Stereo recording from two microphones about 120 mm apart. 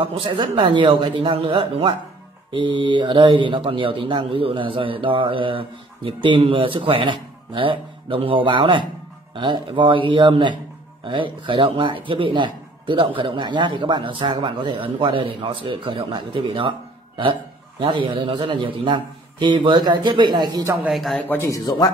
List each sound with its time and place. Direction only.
0.0 s a man's voice: 45° right (ahead or behind)
20.9 s a man's voice: centre (ahead or behind)
21.2 s a man's voice: 15° left (ahead or behind)
21.5 s speech: 30° left (ahead or behind)